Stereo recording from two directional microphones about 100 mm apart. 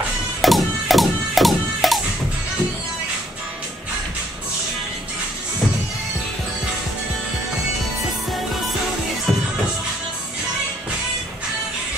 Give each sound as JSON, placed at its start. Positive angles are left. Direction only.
{"t": 0.4, "sound": "music", "side_deg": 0}